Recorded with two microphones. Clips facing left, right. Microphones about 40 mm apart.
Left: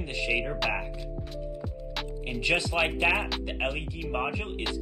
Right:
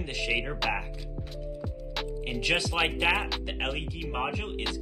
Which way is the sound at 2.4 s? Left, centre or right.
Centre.